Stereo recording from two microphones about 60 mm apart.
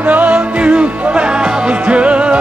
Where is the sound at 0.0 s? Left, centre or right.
Right.